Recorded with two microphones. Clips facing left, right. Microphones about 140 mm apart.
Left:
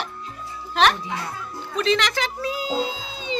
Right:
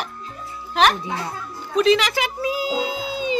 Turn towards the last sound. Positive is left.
turn(degrees=-10)  # may be behind; listen again after turning